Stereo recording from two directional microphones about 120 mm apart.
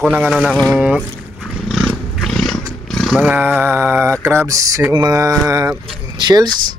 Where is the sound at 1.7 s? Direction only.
Centre (ahead or behind); by 4.8 s 30° right (ahead or behind).